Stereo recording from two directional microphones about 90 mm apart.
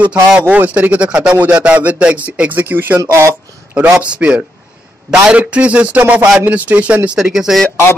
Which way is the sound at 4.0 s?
10° right (ahead or behind).